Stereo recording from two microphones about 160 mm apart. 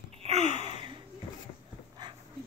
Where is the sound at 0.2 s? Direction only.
45° right (ahead or behind).